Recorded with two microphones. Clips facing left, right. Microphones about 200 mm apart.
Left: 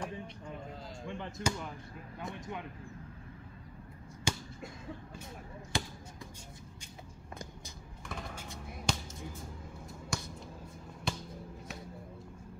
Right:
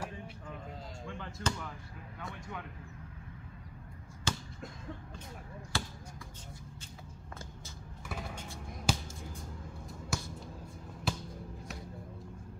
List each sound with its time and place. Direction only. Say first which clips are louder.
1.0 s basketball bounce: left 2 dB; 20° left (ahead or behind)
2.1 s a sound: left 3 dB; 20° left (ahead or behind)
4.3 s a sound: left 1 dB; 15° left (ahead or behind)
5.7 s basketball bounce: left 2 dB; 15° left (ahead or behind)
8.1 s vehicle: right 1 dB; 5° right (ahead or behind)
8.8 s music: right 2 dB; centre (ahead or behind)
9.8 s finger snapping: right 1 dB; 5° right (ahead or behind)
11.1 s basketball bounce: right 1 dB; 5° right (ahead or behind)